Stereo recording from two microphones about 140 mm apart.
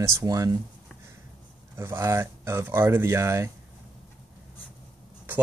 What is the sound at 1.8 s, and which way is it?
Speech, 15° right (ahead or behind).